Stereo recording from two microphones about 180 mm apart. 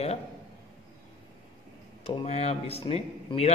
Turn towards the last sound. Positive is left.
turn(degrees=35)  # may be behind; listen again after turning